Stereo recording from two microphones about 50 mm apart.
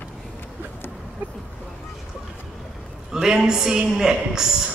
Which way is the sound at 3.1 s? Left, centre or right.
Centre.